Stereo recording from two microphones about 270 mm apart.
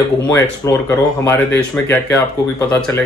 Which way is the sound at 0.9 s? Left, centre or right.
Centre.